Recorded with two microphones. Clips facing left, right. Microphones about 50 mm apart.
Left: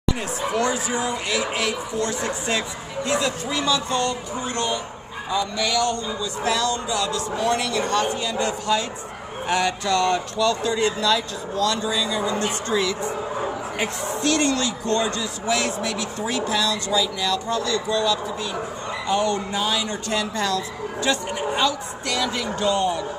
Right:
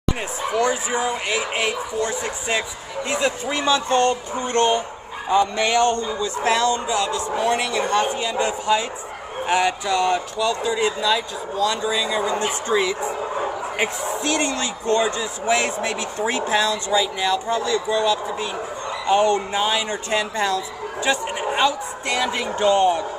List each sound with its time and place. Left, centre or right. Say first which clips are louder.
0.6 s a man's voice: right 3 dB; right